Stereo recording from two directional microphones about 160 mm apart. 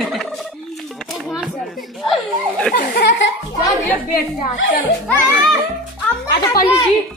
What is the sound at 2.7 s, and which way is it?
Speech, 80° left.